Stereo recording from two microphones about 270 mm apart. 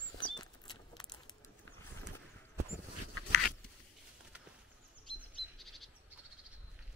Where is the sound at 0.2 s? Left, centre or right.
Centre.